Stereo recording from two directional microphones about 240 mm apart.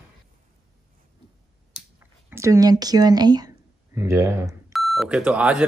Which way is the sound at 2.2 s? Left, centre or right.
Centre.